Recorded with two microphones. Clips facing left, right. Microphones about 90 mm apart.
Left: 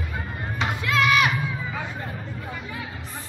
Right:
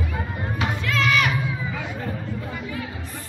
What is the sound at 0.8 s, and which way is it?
Crowd, 15° left (ahead or behind).